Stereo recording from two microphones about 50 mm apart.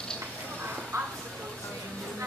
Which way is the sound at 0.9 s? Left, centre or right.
Right.